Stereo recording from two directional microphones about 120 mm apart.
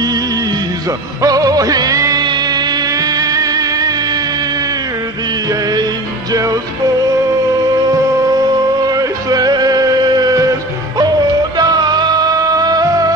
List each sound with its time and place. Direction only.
1.2 s music: 30° right (ahead or behind)
6.3 s music: 30° right (ahead or behind)
8.3 s music: 35° right (ahead or behind)
11.5 s music: 35° right (ahead or behind)